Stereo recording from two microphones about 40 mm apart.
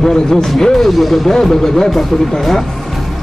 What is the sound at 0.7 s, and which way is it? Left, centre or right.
Speech, centre.